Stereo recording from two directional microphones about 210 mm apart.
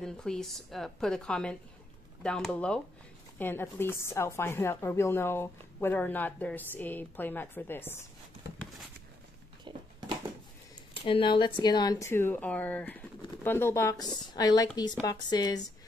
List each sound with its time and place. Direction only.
0.0 s a woman's voice: 5° left (ahead or behind)
9.7 s a sound: 20° right (ahead or behind)
11.0 s speech: 25° left (ahead or behind)